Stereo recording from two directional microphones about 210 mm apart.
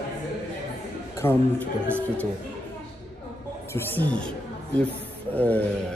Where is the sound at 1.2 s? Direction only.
10° left (ahead or behind).